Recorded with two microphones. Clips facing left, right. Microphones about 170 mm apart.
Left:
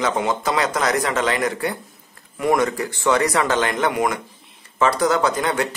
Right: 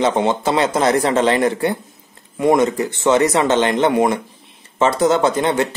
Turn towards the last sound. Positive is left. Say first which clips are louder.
# right 4 dB
turn(degrees=-25)  # may be behind; listen again after turning